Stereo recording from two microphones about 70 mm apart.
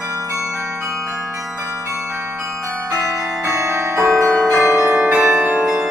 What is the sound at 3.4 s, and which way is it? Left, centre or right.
Change ringing, right.